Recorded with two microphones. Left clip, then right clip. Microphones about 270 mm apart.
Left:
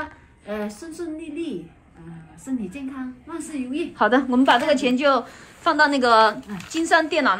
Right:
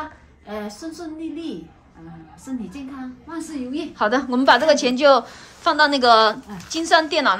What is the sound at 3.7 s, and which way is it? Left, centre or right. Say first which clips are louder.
A woman's voice: left 1 dB; centre.